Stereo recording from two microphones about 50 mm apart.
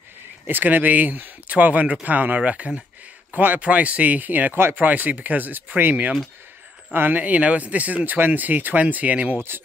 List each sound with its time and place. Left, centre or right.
0.5 s speech: right